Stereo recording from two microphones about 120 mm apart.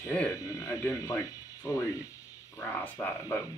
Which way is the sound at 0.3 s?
25° left (ahead or behind).